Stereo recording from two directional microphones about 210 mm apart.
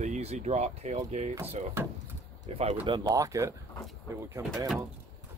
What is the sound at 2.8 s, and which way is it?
Speech, 20° right (ahead or behind).